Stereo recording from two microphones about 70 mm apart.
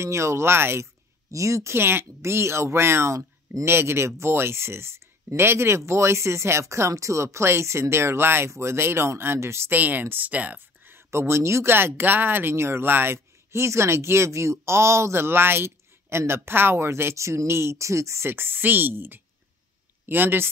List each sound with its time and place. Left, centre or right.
0.0 s speech: right
1.3 s speech: right
9.7 s speech: right